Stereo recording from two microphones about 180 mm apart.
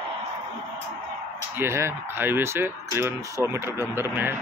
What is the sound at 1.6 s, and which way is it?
Speech, 15° right (ahead or behind).